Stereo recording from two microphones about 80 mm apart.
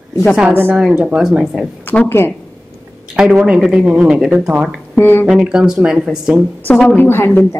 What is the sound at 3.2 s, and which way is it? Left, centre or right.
Speech, centre.